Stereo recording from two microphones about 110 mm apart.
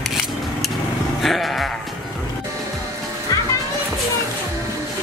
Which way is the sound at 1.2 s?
Centre (ahead or behind).